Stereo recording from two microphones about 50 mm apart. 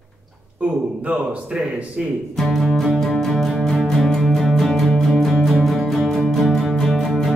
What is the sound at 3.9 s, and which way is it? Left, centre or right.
Music, centre.